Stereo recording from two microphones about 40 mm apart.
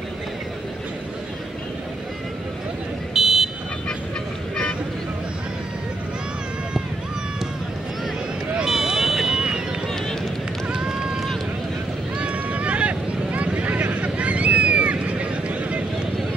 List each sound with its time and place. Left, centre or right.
3.2 s car alarm: centre
8.6 s a sound: centre
10.7 s run: right
12.2 s vehicle: right
13.9 s vehicle: right